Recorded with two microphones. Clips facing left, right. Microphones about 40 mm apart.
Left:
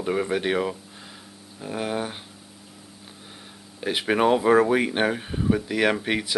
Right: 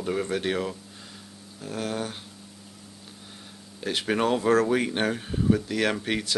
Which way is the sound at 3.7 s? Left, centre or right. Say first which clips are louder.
Left 3 dB; centre.